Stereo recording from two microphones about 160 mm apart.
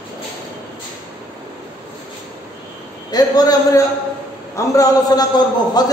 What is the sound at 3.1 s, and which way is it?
A man's voice, 25° left (ahead or behind).